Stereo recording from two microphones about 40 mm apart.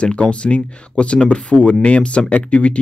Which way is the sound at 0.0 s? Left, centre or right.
Left.